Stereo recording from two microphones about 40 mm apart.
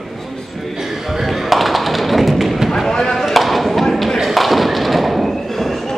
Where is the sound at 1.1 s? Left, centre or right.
Centre.